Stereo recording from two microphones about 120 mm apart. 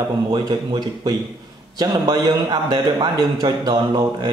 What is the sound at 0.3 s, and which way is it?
A man's voice, 40° right (ahead or behind).